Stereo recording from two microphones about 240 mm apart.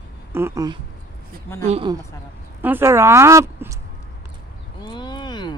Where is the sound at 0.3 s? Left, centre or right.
Centre.